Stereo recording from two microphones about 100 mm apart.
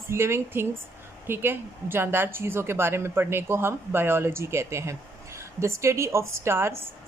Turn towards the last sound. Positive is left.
turn(degrees=-25)  # may be behind; listen again after turning